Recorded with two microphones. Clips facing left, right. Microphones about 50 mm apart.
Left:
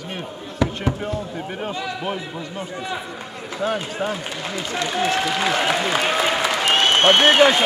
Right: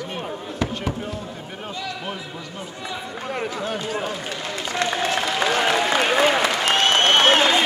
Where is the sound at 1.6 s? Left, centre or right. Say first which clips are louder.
Left 3 dB; left.